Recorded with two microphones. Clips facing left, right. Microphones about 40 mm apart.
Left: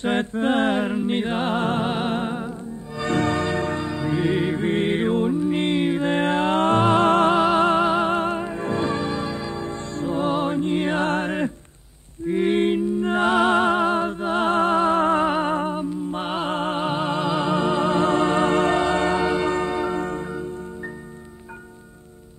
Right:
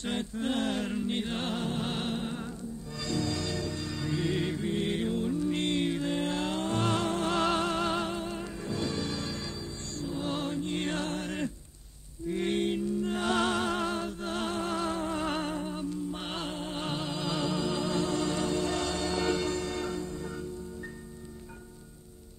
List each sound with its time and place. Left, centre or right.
0.1 s music: left
3.0 s music: left
3.9 s music: left
4.6 s music: left
5.3 s music: left
6.0 s mantra: left
6.8 s music: left
8.1 s music: left
9.9 s music: left
11.1 s music: left
15.2 s music: left
16.4 s music: left
16.8 s music: left
19.2 s church bell: left